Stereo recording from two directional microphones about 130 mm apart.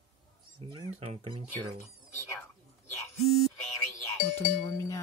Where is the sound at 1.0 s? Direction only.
45° right (ahead or behind).